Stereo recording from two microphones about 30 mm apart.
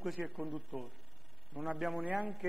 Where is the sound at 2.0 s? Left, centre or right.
Right.